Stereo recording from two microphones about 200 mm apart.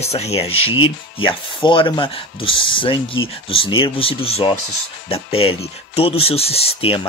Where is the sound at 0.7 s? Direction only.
85° left.